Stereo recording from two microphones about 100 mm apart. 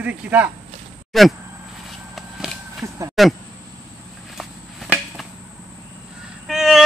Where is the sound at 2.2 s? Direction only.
5° right (ahead or behind).